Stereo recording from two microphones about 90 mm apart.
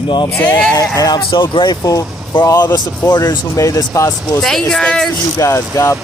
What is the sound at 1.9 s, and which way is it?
Speech, 40° left (ahead or behind).